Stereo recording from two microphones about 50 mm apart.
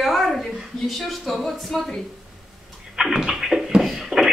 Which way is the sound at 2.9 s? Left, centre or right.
Centre.